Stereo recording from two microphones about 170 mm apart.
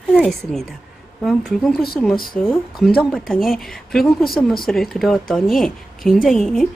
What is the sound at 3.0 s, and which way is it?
A woman's voice, centre (ahead or behind).